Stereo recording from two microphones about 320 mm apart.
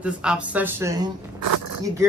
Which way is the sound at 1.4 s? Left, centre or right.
Right.